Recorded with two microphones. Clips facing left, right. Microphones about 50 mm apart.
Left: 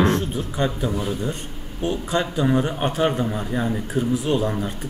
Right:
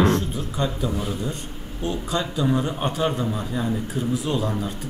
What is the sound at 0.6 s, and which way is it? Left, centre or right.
Speech, left.